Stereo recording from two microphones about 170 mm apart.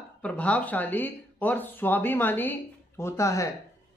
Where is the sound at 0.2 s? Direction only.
5° left (ahead or behind).